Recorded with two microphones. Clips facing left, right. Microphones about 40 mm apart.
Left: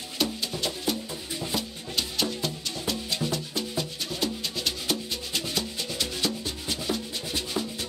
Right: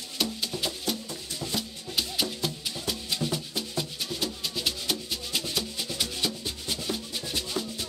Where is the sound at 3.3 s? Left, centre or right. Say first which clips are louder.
Left 2 dB; centre.